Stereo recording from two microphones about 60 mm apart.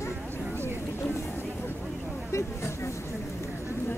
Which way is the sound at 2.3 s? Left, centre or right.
Left.